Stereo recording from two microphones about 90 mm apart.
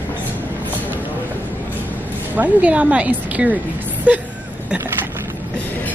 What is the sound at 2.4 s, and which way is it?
A woman's voice, 15° right (ahead or behind).